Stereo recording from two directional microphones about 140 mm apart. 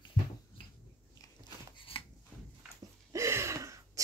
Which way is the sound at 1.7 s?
40° left (ahead or behind).